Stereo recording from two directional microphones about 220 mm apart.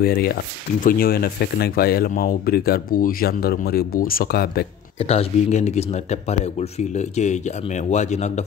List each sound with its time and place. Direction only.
0.0 s speech: 45° left (ahead or behind)
4.9 s speech: 25° left (ahead or behind)